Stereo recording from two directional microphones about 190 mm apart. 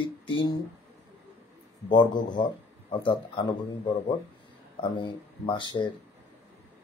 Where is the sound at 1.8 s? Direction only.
25° left (ahead or behind).